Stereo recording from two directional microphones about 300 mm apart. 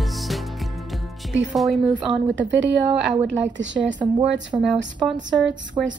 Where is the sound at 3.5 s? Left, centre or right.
Right.